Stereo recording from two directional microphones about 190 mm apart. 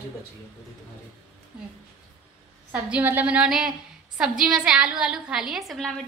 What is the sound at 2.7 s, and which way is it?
A woman's voice, 10° right (ahead or behind).